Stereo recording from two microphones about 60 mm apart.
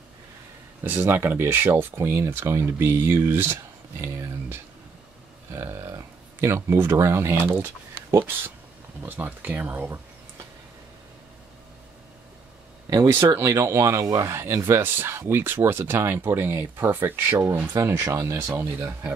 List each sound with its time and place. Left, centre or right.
0.8 s speech: right
5.5 s speech: right
12.9 s speech: right
13.6 s speech: right
14.2 s speech: right
17.8 s speech: right
18.1 s speech: right
18.4 s speech: right